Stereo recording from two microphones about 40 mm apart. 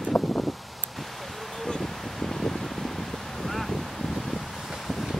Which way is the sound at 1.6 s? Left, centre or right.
Centre.